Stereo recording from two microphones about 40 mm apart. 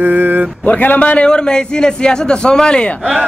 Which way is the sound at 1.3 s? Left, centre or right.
Left.